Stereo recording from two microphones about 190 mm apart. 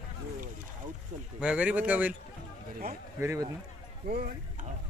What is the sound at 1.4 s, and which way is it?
Speech, 5° right (ahead or behind).